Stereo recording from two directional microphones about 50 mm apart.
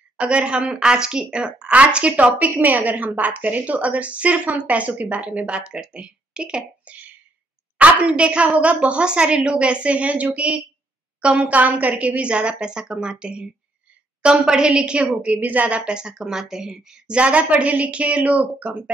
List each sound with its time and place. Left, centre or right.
0.2 s a woman's voice: right
15.8 s a woman's voice: centre